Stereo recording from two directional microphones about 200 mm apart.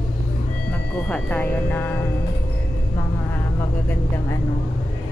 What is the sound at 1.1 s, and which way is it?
Speech, 10° left (ahead or behind).